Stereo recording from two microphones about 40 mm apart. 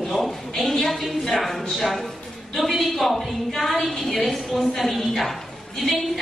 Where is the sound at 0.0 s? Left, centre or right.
Centre.